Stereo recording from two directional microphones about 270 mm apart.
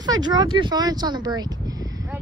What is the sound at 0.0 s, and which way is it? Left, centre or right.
Speech, centre.